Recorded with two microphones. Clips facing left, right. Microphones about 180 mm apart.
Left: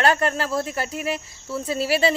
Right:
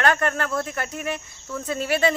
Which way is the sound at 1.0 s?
10° left (ahead or behind).